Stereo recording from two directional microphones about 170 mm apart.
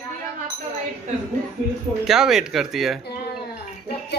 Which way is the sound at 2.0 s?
Centre (ahead or behind).